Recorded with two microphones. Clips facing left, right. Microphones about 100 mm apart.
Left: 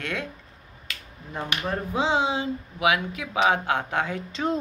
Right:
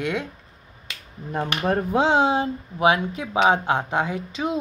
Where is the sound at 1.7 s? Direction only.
55° right (ahead or behind).